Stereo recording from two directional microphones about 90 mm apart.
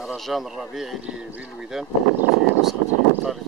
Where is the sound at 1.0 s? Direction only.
15° right (ahead or behind).